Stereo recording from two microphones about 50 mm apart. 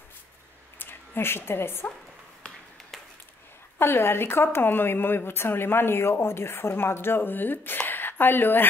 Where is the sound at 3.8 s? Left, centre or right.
Left.